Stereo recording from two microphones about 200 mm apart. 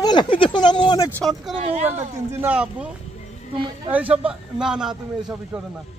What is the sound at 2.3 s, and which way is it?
A man's voice, 5° right (ahead or behind).